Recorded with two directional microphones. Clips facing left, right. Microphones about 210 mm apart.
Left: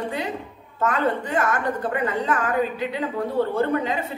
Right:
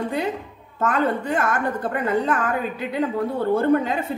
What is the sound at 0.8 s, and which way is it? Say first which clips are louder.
A woman's voice: right 1 dB; 50° right (ahead or behind).